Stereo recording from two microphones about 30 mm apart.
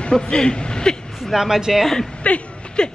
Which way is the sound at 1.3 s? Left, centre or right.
Centre.